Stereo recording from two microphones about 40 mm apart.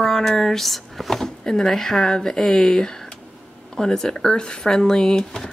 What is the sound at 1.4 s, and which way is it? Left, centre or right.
A woman's voice, centre.